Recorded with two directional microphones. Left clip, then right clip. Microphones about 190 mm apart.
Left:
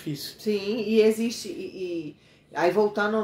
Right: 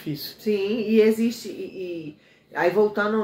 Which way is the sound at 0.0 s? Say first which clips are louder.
Right 2 dB; centre (ahead or behind).